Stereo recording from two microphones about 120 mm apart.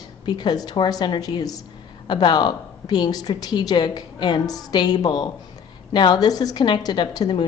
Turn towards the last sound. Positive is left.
turn(degrees=35)  # may be behind; listen again after turning